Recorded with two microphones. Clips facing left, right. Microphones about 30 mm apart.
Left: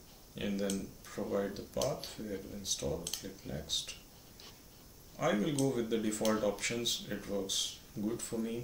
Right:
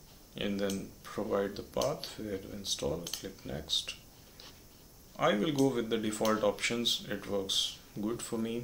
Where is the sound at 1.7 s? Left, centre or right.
Centre.